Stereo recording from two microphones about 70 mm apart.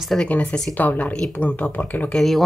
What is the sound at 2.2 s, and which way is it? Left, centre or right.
Speech, centre.